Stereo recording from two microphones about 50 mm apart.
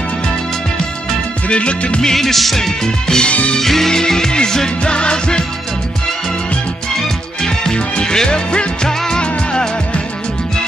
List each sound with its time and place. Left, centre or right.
1.5 s music: left
2.0 s music: centre
3.3 s music: left
3.5 s music: centre
7.4 s music: centre